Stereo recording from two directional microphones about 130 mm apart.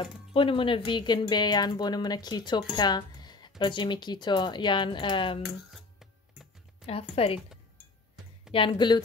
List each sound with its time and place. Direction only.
0.3 s speech: 40° left (ahead or behind)
5.6 s music: 5° right (ahead or behind)
6.9 s speech: 50° left (ahead or behind)
8.5 s speech: 40° left (ahead or behind)